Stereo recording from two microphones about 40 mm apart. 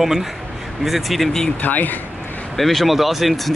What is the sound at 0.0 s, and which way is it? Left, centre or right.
A man's voice, centre.